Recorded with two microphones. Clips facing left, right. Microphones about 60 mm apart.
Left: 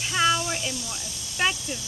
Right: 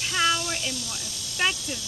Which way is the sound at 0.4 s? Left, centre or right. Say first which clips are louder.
Left 1 dB; centre.